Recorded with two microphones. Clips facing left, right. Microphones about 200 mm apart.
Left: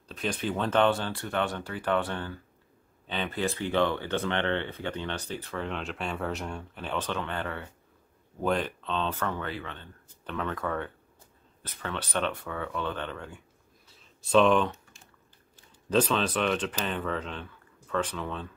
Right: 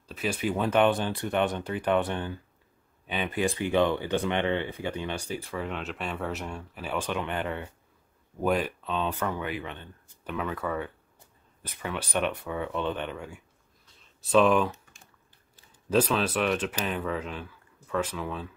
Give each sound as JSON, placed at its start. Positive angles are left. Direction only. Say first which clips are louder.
{"t": 0.1, "sound": "speech", "louder": "right 2 dB", "side_deg": -5}
{"t": 15.9, "sound": "speech", "louder": "right 1 dB", "side_deg": -5}